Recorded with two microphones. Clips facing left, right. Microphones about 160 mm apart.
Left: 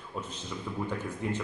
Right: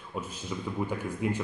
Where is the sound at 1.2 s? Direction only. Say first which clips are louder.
Right 3 dB; 10° right (ahead or behind).